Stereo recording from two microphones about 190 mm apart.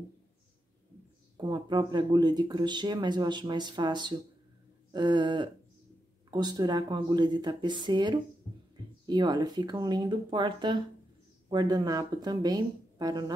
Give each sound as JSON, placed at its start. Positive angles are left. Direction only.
{"t": 1.3, "sound": "speech", "side_deg": -25}